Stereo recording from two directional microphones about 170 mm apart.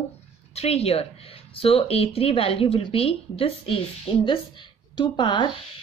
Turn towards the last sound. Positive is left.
turn(degrees=25)  # may be behind; listen again after turning